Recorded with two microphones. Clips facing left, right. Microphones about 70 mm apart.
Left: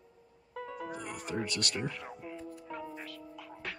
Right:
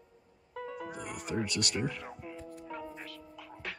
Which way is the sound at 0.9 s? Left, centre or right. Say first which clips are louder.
Even; centre.